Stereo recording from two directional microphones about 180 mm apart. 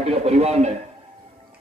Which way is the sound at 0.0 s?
35° right (ahead or behind).